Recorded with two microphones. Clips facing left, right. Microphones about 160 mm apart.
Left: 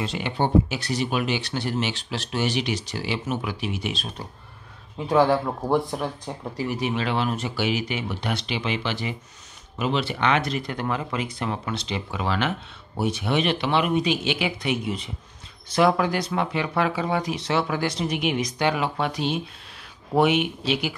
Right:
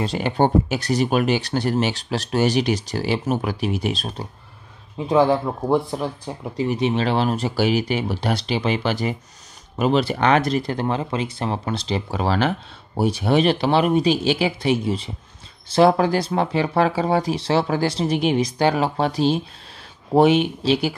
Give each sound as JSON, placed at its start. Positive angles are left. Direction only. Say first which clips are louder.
{"t": 0.0, "sound": "speech", "louder": "right 6 dB", "side_deg": -40}
{"t": 4.9, "sound": "speech", "louder": "right 2 dB", "side_deg": -15}
{"t": 6.5, "sound": "speech", "louder": "right 6 dB", "side_deg": -25}